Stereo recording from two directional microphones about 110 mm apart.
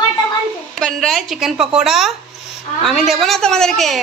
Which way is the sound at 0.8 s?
Centre (ahead or behind).